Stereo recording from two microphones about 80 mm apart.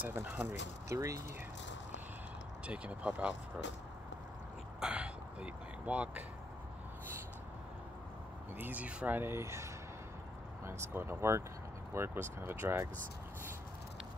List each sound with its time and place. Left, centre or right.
0.0 s speech: right
0.8 s speech: right
2.6 s speech: centre
4.7 s speech: centre
8.5 s speech: right